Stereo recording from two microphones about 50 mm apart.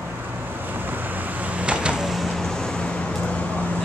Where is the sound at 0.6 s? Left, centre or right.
Right.